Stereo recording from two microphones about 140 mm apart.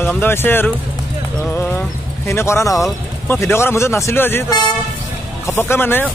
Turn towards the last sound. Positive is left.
turn(degrees=15)  # may be behind; listen again after turning